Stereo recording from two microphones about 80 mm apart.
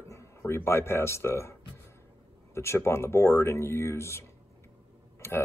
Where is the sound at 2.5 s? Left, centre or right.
Left.